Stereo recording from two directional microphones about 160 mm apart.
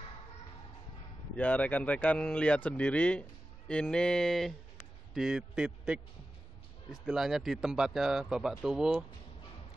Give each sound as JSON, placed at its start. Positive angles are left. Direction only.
{"t": 1.3, "sound": "speech", "side_deg": 10}
{"t": 7.1, "sound": "speech", "side_deg": 0}